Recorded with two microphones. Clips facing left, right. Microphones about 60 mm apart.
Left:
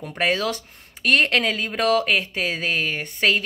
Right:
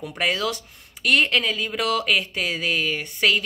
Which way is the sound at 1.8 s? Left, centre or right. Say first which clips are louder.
Left 3 dB; left.